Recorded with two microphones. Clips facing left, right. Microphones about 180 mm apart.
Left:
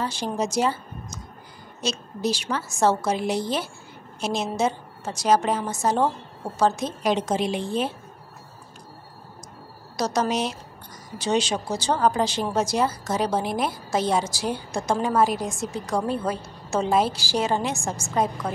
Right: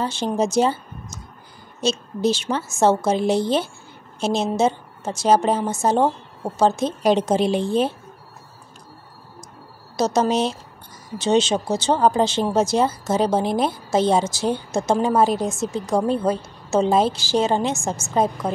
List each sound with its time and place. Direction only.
0.0 s a woman's voice: 25° right (ahead or behind)
9.9 s speech: 25° right (ahead or behind)